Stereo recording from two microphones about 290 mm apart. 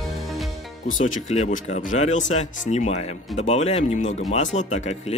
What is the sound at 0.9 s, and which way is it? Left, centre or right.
Speech, left.